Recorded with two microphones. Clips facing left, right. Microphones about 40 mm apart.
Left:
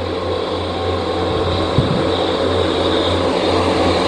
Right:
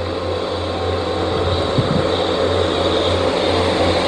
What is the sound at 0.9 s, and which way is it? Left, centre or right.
Microwave oven, left.